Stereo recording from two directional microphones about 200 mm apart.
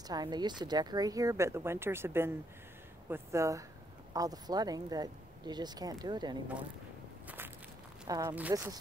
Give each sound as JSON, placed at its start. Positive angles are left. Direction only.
{"t": 0.1, "sound": "speech", "side_deg": -20}
{"t": 7.2, "sound": "walk", "side_deg": -10}
{"t": 8.1, "sound": "speech", "side_deg": -20}